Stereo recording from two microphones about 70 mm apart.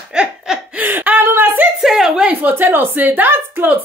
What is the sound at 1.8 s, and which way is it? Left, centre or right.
Speech, centre.